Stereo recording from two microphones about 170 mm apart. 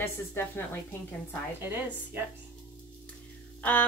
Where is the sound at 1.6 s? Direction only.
10° right (ahead or behind).